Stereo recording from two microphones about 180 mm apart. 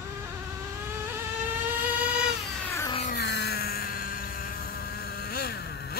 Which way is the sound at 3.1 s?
65° left (ahead or behind).